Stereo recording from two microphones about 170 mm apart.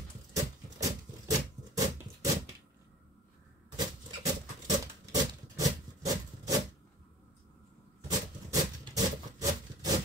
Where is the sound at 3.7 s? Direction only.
20° right (ahead or behind).